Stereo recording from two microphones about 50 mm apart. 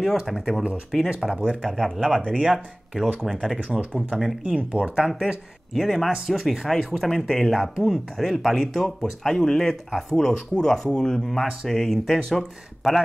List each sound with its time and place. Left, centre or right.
0.3 s speech: centre
1.3 s speech: right
1.6 s speech: centre
3.5 s speech: right
4.1 s speech: centre
4.7 s speech: centre